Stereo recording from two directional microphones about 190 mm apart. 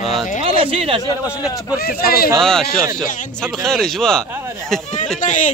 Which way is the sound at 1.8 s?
50° left (ahead or behind).